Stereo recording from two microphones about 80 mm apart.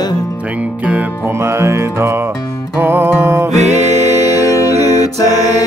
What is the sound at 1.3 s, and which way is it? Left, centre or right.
Music, right.